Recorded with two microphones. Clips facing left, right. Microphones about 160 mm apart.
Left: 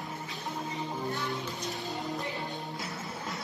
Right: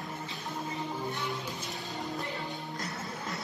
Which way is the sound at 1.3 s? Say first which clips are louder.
Left 2 dB; centre (ahead or behind).